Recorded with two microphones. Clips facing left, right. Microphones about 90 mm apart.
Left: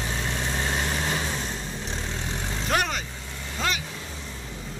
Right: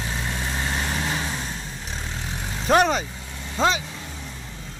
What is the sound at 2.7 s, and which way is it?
Vehicle, 25° right (ahead or behind).